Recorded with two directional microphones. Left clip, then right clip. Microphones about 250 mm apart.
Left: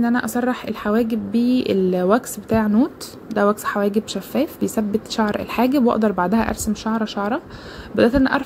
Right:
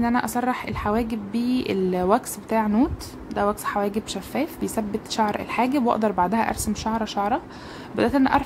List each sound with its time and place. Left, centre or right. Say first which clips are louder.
0.0 s a woman's voice: left 2 dB; centre